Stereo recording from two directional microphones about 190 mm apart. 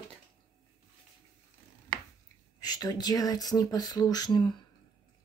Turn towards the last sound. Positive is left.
turn(degrees=20)  # may be behind; listen again after turning